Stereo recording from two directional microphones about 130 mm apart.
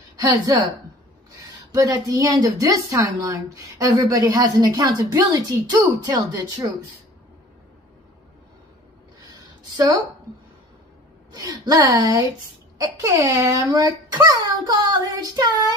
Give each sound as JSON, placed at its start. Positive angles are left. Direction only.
{"t": 0.2, "sound": "a woman's voice", "side_deg": -30}
{"t": 1.7, "sound": "a woman's voice", "side_deg": -25}
{"t": 11.3, "sound": "a woman's voice", "side_deg": -30}